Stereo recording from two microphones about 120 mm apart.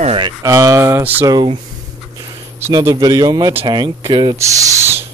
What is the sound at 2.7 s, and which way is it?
Speech, 30° right (ahead or behind).